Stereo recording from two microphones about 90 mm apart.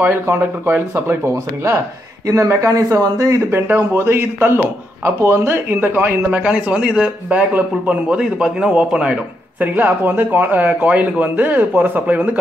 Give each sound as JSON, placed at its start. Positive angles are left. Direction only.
{"t": 0.0, "sound": "speech", "side_deg": -20}